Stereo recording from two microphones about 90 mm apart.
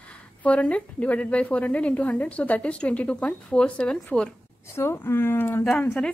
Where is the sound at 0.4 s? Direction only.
15° left (ahead or behind).